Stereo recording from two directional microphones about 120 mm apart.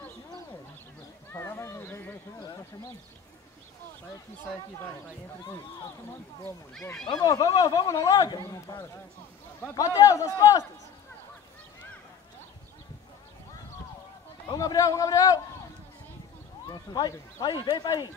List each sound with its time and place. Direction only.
1.3 s a sound: 20° left (ahead or behind)
6.7 s speech: 5° left (ahead or behind)
7.1 s a man's voice: 30° left (ahead or behind)
14.5 s a man's voice: 30° left (ahead or behind)
16.6 s speech: 35° left (ahead or behind)